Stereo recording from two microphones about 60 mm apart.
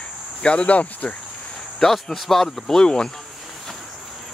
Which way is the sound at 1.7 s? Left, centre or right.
Centre.